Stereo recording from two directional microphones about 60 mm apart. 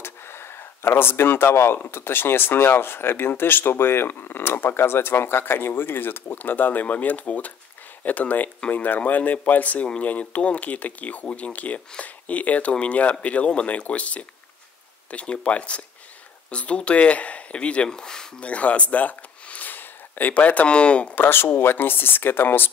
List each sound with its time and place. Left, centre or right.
0.0 s speech: left; by 18.5 s centre
18.5 s speech: left
21.1 s speech: left